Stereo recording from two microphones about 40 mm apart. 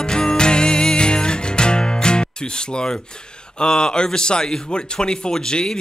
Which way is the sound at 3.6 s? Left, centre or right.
Left.